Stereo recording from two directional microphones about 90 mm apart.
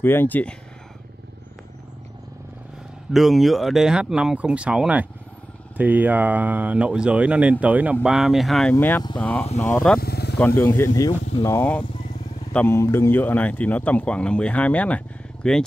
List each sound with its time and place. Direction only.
0.0 s speech: 25° left (ahead or behind)
3.1 s speech: centre (ahead or behind)
8.7 s speech: 30° left (ahead or behind)
9.8 s vehicle: 10° left (ahead or behind)
10.6 s speech: 25° left (ahead or behind)
11.0 s speech: 50° left (ahead or behind)
12.7 s speech: 30° left (ahead or behind); by 15.6 s 10° left (ahead or behind)